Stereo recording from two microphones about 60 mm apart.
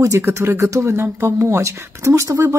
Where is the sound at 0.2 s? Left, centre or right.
Right.